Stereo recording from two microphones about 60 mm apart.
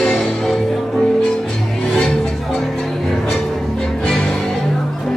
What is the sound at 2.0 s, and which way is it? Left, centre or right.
Music, centre.